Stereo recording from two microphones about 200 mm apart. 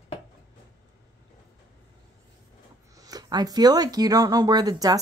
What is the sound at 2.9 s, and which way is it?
Speech, 20° right (ahead or behind).